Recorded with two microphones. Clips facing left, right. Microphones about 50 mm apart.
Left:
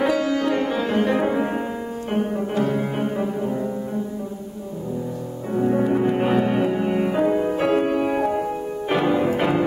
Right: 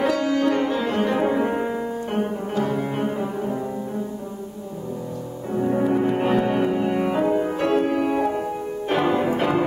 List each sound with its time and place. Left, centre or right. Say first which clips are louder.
0.0 s music: even; centre
5.6 s music: left 1 dB; centre
8.8 s music: left 1 dB; centre